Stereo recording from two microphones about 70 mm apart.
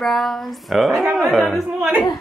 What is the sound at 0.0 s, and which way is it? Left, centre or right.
A woman's voice, centre.